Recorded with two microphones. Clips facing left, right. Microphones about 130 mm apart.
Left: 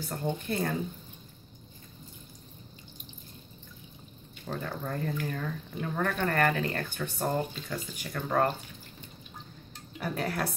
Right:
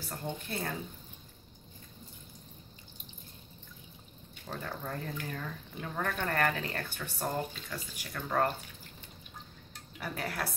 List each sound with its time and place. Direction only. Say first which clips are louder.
0.1 s speech: left 6 dB; 15° left (ahead or behind)
4.5 s speech: left 4 dB; 5° right (ahead or behind)
7.2 s speech: left 4 dB; 20° left (ahead or behind)
8.1 s speech: left 3 dB; 5° left (ahead or behind)
9.9 s speech: left 5 dB; centre (ahead or behind)